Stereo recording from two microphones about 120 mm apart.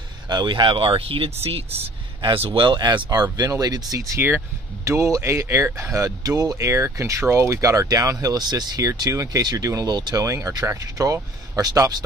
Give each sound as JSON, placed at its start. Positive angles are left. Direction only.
{"t": 0.3, "sound": "speech", "side_deg": -40}
{"t": 2.2, "sound": "speech", "side_deg": -45}